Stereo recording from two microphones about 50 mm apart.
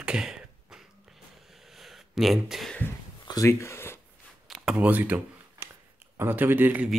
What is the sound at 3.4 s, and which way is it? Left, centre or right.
Speech, left.